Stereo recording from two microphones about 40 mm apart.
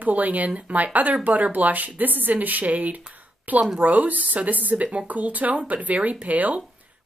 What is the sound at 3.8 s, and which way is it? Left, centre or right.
A woman's voice, right.